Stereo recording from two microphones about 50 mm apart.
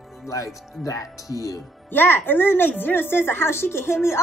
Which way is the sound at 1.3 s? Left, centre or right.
Right.